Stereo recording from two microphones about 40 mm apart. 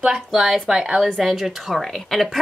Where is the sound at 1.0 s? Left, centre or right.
Centre.